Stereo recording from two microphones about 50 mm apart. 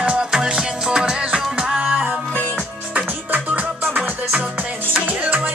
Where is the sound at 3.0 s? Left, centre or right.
Right.